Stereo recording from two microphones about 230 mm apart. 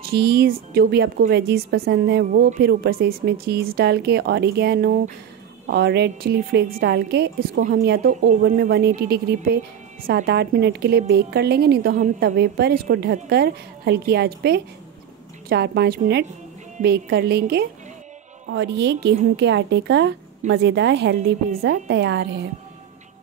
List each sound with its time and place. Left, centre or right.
0.0 s a woman's voice: right